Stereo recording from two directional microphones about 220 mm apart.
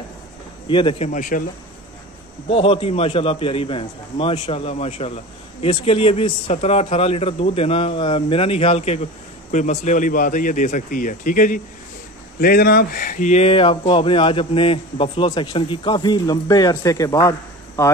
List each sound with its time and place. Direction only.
0.7 s a man's voice: 20° left (ahead or behind)
2.5 s a man's voice: 25° left (ahead or behind)